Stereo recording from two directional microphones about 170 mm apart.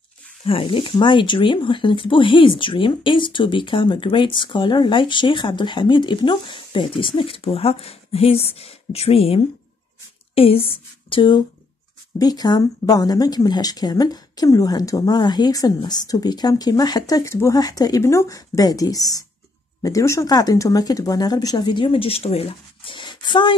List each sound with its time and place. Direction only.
0.5 s speech: 30° left (ahead or behind)